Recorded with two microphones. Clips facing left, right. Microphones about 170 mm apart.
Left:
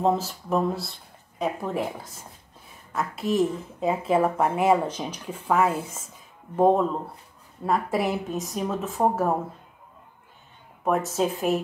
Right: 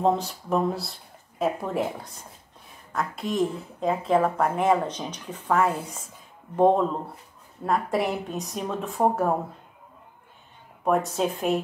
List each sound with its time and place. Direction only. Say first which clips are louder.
0.0 s a woman's voice: even; centre (ahead or behind)
10.8 s speech: even; centre (ahead or behind)